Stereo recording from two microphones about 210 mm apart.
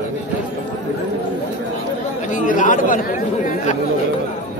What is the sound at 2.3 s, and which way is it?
Speech, 40° left (ahead or behind).